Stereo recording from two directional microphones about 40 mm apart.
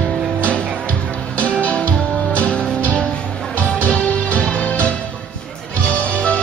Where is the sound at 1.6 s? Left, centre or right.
Left.